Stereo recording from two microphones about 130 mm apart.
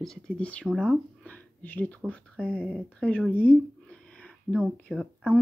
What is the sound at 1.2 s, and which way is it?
Speech, 10° left (ahead or behind).